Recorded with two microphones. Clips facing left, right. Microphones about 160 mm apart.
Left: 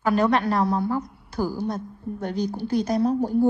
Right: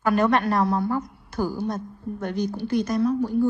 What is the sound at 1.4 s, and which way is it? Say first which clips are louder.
Speech: even; 5° left (ahead or behind).